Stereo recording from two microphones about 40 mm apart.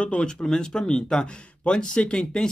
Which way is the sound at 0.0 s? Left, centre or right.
Left.